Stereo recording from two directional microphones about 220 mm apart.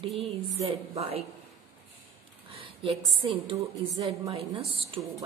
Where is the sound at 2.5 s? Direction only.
25° right (ahead or behind).